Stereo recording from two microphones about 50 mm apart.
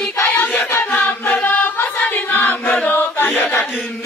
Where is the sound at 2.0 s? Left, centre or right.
Left.